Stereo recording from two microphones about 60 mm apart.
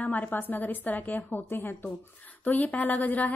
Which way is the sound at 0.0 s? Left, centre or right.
Left.